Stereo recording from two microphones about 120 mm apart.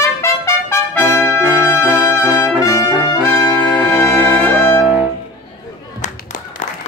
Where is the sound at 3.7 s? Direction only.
15° left (ahead or behind).